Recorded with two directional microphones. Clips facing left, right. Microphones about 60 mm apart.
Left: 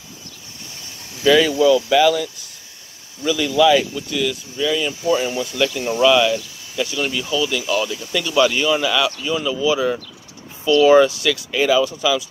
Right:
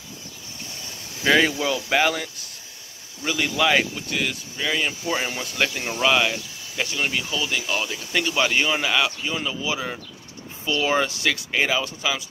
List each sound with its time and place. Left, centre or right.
1.2 s speech: right
3.3 s speech: right
5.8 s speech: right